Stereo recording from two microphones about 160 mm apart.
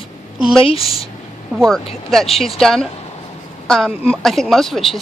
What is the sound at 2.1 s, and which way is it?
Speech, centre (ahead or behind).